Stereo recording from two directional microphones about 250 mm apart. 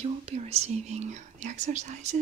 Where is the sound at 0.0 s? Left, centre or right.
Right.